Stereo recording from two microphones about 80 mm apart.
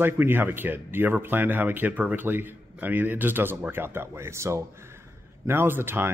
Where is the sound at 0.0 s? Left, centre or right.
Right.